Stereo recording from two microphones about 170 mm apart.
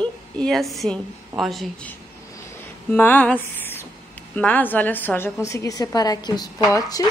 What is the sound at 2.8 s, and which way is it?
Speech, 10° left (ahead or behind).